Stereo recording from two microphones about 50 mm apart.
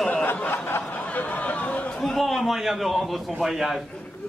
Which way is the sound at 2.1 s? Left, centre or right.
Centre.